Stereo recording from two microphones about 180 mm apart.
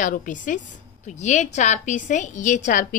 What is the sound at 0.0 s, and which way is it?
A woman's voice, 45° left (ahead or behind).